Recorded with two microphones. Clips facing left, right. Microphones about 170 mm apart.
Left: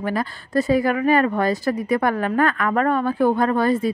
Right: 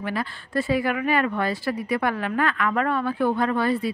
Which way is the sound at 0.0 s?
40° left (ahead or behind).